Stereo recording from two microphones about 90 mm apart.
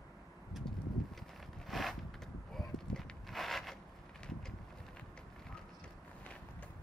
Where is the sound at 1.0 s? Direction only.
Centre (ahead or behind).